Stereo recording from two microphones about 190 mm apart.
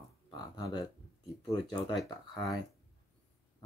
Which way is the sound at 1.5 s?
20° left (ahead or behind).